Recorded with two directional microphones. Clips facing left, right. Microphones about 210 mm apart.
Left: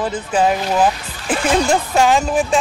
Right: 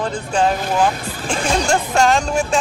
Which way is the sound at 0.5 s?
50° right (ahead or behind).